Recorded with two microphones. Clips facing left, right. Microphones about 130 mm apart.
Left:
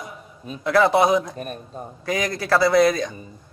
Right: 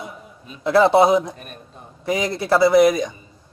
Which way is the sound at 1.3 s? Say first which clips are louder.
Left 8 dB; 40° left (ahead or behind).